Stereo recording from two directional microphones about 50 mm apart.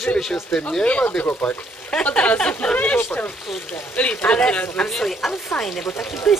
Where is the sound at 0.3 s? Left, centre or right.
Centre.